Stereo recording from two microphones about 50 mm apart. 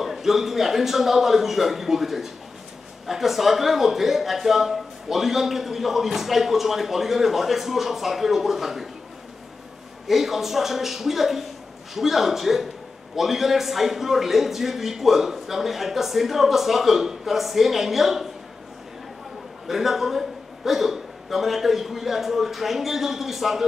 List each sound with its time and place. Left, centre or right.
0.0 s a man's voice: centre
10.0 s a man's voice: centre
19.7 s a man's voice: centre